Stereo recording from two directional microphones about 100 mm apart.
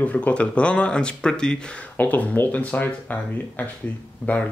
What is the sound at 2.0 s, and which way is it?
A man's voice, 20° left (ahead or behind).